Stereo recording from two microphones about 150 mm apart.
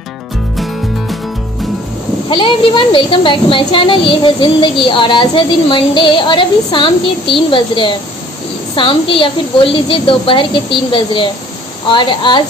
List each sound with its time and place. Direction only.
2.2 s speech: 35° left (ahead or behind)